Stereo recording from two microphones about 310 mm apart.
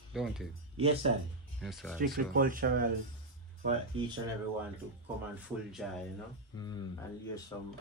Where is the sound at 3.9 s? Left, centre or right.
Centre.